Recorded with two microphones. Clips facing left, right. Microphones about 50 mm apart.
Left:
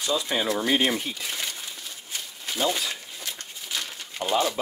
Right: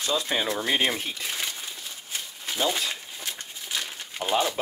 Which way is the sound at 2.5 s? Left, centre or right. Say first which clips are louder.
Even; centre.